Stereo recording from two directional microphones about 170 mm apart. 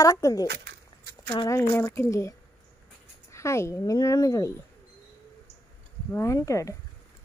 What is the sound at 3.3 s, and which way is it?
Speech, 15° left (ahead or behind).